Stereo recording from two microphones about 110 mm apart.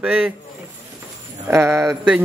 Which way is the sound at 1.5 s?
30° right (ahead or behind).